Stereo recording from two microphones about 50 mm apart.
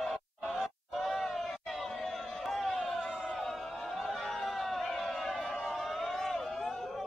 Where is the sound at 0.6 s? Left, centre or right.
Centre.